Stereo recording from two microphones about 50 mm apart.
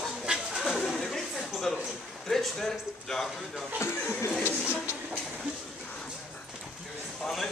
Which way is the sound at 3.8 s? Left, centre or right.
Left.